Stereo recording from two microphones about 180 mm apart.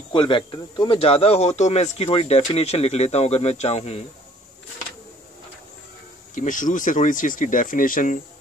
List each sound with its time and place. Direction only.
0.1 s speech: 25° left (ahead or behind)
6.3 s speech: 45° left (ahead or behind)